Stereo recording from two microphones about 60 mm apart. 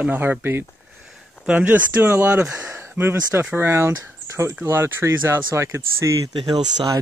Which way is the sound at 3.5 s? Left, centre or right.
Right.